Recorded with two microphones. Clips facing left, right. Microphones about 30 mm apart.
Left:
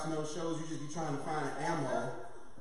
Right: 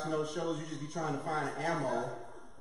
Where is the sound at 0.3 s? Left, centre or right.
Centre.